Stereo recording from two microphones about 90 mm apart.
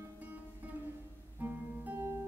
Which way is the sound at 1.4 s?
25° right (ahead or behind).